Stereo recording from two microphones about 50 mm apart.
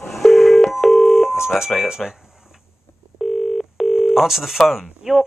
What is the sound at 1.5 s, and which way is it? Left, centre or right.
Speech, centre.